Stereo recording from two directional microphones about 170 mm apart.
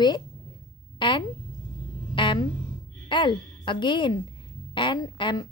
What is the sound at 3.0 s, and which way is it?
A woman's voice, 30° left (ahead or behind).